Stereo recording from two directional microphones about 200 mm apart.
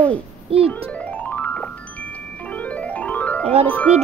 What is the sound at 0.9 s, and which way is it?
Chime, 5° left (ahead or behind).